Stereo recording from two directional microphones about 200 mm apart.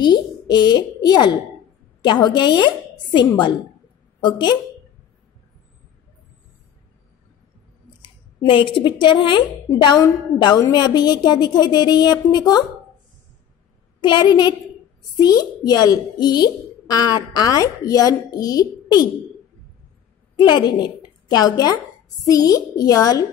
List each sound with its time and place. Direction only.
0.0 s a child's voice: 20° left (ahead or behind)
8.0 s a woman's voice: 25° left (ahead or behind)
14.0 s a woman's voice: 20° left (ahead or behind)
20.3 s a woman's voice: 20° left (ahead or behind)